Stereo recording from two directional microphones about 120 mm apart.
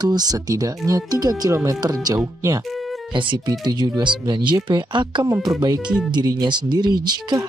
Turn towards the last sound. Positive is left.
turn(degrees=-35)  # may be behind; listen again after turning